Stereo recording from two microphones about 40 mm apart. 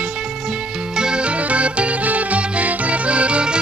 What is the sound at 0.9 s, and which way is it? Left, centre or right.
Music, right.